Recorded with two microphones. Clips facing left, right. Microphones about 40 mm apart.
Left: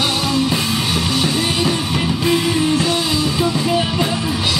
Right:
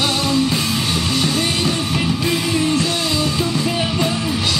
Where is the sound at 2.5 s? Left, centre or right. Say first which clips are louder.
Left 1 dB; left.